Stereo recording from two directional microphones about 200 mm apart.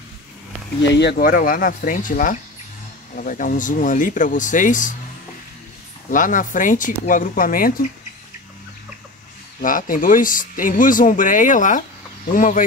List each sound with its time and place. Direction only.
0.9 s speech: 50° left (ahead or behind)
6.0 s speech: 40° left (ahead or behind)
9.6 s speech: 45° left (ahead or behind)